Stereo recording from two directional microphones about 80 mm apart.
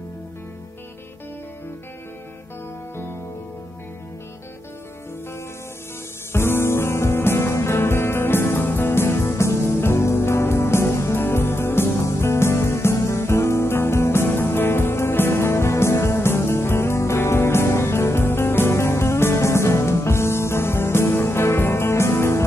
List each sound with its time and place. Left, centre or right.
6.3 s music: left